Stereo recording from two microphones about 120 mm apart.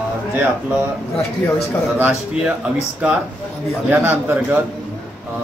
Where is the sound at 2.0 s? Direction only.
15° right (ahead or behind).